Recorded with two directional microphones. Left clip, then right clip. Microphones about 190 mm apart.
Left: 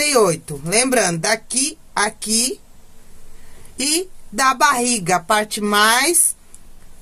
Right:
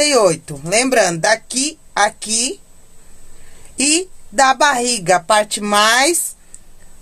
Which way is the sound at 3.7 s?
50° right (ahead or behind).